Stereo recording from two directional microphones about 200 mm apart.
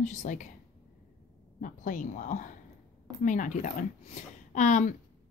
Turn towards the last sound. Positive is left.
turn(degrees=35)  # may be behind; listen again after turning